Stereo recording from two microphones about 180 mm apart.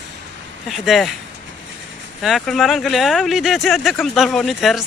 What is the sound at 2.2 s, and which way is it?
Speech, centre (ahead or behind).